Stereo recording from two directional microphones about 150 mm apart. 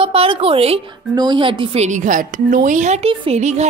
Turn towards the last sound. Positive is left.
turn(degrees=-50)  # may be behind; listen again after turning